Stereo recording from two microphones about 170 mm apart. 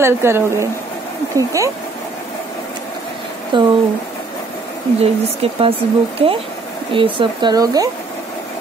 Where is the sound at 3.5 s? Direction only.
30° right (ahead or behind).